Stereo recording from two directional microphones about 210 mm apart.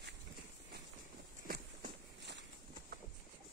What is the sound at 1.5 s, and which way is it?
Walk, 50° right (ahead or behind).